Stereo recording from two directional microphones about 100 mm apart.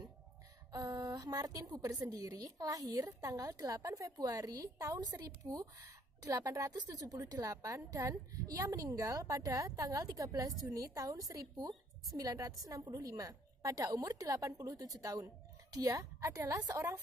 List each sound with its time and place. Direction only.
0.7 s a woman's voice: 40° right (ahead or behind)
5.4 s a woman's voice: 45° right (ahead or behind)
12.8 s a woman's voice: 50° right (ahead or behind)
13.1 s a woman's voice: 35° right (ahead or behind)
16.6 s a woman's voice: 20° right (ahead or behind)